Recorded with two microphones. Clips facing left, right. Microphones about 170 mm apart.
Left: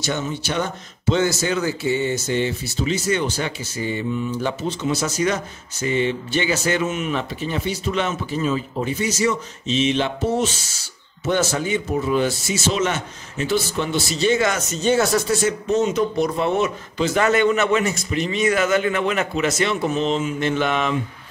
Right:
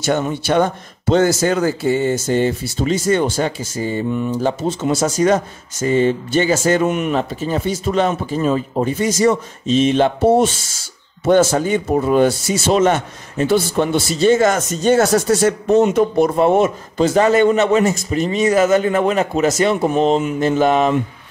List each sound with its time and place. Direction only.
0.0 s a man's voice: 55° right (ahead or behind)
7.2 s a man's voice: 40° right (ahead or behind)
17.1 s a man's voice: 35° right (ahead or behind); by 20.3 s 55° right (ahead or behind)
20.3 s a man's voice: 40° right (ahead or behind)